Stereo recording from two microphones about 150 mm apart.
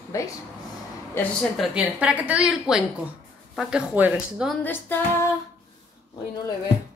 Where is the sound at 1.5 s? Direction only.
5° right (ahead or behind).